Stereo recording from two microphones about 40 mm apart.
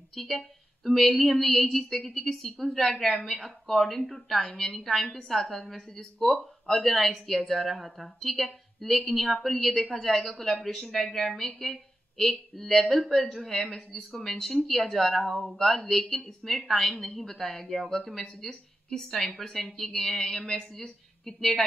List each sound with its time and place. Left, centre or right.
0.1 s a woman's voice: centre
5.9 s a woman's voice: centre
6.3 s a woman's voice: centre